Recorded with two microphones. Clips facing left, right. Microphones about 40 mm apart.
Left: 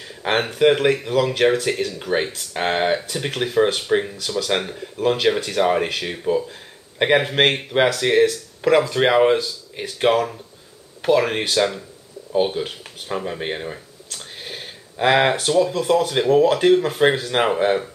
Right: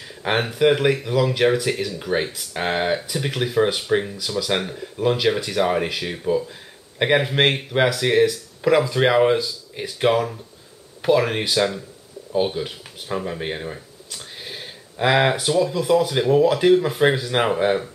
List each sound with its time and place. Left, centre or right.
0.0 s speech: centre
15.3 s speech: centre